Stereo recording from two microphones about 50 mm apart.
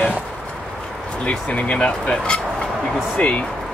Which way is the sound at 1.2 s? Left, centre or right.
Left.